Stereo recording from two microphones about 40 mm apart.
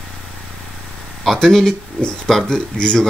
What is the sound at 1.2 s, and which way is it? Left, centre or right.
Speech, centre.